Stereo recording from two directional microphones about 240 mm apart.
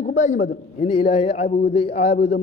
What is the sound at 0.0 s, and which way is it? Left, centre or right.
A man's voice, left.